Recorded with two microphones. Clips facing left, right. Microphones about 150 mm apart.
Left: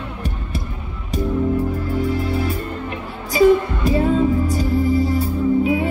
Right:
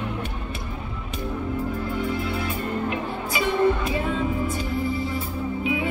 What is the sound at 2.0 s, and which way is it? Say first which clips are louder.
Music: left 5 dB; 35° left (ahead or behind).